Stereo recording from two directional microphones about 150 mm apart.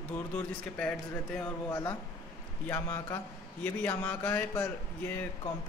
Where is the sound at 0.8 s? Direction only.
10° left (ahead or behind).